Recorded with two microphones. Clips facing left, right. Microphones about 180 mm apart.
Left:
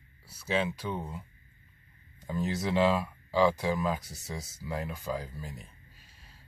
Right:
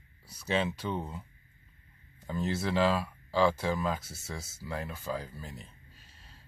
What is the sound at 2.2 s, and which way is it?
Speech, 10° left (ahead or behind).